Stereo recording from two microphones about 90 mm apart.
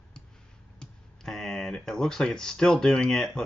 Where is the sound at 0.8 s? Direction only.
5° left (ahead or behind).